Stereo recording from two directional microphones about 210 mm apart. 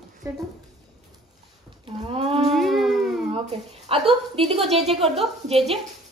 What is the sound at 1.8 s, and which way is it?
Speech, 25° right (ahead or behind).